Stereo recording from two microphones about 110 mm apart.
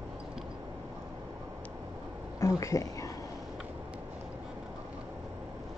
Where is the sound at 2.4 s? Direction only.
30° left (ahead or behind).